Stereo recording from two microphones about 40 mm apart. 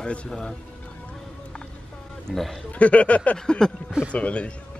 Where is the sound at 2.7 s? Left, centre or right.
Left.